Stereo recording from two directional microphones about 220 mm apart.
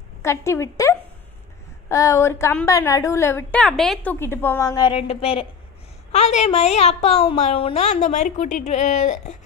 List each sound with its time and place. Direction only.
0.2 s a woman's voice: 10° left (ahead or behind); by 9.2 s 35° left (ahead or behind)